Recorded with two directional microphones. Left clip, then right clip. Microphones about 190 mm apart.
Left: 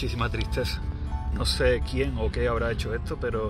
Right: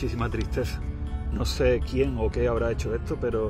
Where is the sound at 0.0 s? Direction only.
60° right (ahead or behind).